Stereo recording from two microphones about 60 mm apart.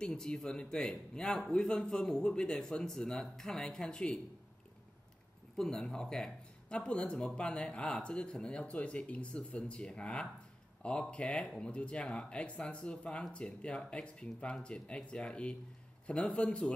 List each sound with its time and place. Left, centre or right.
0.0 s speech: centre
5.6 s speech: centre